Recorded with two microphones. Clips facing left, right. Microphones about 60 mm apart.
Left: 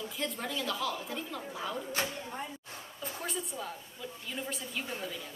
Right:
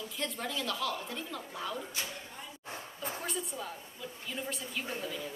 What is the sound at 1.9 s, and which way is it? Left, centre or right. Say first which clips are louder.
Speech: left 6 dB; left.